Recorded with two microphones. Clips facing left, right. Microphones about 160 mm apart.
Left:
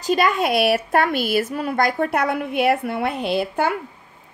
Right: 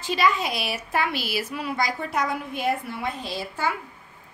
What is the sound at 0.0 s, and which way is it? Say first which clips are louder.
A woman's voice: left 4 dB; 50° left (ahead or behind).